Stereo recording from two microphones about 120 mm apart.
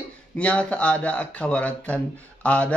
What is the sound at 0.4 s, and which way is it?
Speech, 10° left (ahead or behind).